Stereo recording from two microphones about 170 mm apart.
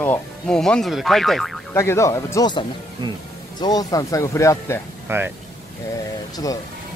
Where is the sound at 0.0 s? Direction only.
10° left (ahead or behind).